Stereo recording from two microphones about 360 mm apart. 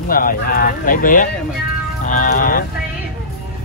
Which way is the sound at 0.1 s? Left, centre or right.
Left.